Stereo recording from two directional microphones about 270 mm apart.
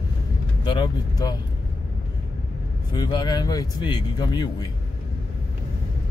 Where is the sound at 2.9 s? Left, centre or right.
Centre.